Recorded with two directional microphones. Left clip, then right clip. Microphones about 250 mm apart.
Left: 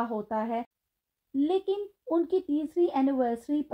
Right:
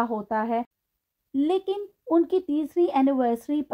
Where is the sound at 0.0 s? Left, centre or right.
Right.